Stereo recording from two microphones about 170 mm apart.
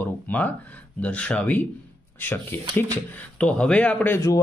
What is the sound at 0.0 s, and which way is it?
Speech, 10° left (ahead or behind).